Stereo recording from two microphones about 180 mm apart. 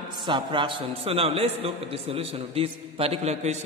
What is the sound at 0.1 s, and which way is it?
A man's voice, 25° right (ahead or behind).